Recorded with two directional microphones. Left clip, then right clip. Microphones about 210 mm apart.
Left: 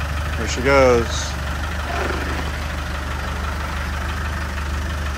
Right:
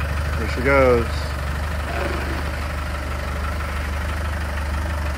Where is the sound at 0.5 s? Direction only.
10° left (ahead or behind).